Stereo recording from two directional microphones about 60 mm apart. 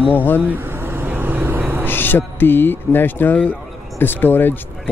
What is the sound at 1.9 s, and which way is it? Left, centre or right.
Speech, left.